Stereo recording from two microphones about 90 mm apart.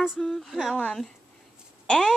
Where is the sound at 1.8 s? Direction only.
10° left (ahead or behind).